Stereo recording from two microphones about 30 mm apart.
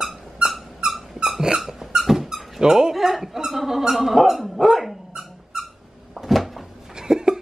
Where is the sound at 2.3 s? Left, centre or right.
Right.